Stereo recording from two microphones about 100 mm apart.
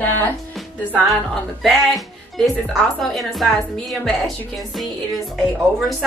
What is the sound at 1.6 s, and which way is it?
Speech, centre (ahead or behind).